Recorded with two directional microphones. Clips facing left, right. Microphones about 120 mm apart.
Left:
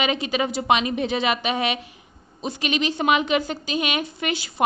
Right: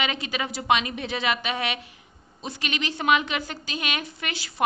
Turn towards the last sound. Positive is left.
turn(degrees=20)  # may be behind; listen again after turning